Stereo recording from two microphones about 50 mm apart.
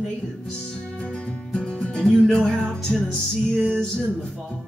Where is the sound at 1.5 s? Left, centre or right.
Centre.